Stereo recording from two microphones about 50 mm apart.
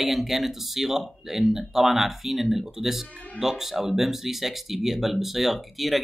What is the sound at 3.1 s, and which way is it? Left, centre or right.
Speech, left.